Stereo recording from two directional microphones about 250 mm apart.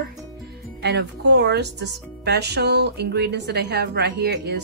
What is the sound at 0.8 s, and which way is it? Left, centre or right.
Speech, right.